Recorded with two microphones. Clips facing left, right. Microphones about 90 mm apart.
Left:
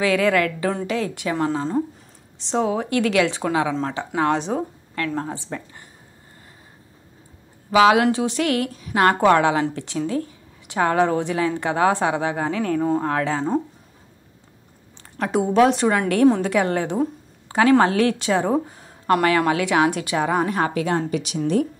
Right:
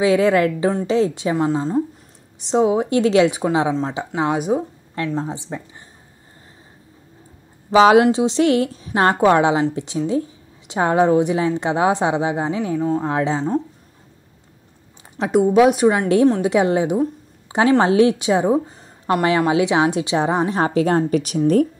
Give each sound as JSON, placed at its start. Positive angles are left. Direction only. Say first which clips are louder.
{"t": 0.0, "sound": "a woman's voice", "louder": "right 4 dB", "side_deg": -20}
{"t": 1.3, "sound": "a woman's voice", "louder": "right 3 dB", "side_deg": -5}
{"t": 2.3, "sound": "a woman's voice", "louder": "right 5 dB", "side_deg": -20}
{"t": 4.9, "sound": "a woman's voice", "louder": "right 2 dB", "side_deg": -20}
{"t": 7.7, "sound": "a woman's voice", "louder": "right 3 dB", "side_deg": -25}
{"t": 15.2, "sound": "a woman's voice", "louder": "right 3 dB", "side_deg": 0}
{"t": 16.3, "sound": "a woman's voice", "louder": "right 4 dB", "side_deg": -20}
{"t": 21.1, "sound": "speech", "louder": "right 5 dB", "side_deg": -45}